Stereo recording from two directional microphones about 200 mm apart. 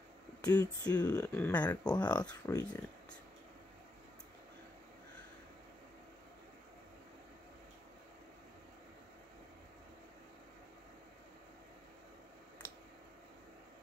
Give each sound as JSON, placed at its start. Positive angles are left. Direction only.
{"t": 0.4, "sound": "speech", "side_deg": 20}
{"t": 1.7, "sound": "speech", "side_deg": 20}
{"t": 2.2, "sound": "speech", "side_deg": 10}